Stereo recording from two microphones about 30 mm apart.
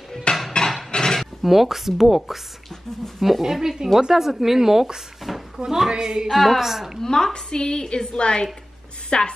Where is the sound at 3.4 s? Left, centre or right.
Centre.